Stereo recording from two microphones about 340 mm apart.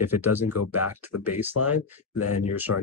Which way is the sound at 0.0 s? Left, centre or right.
Centre.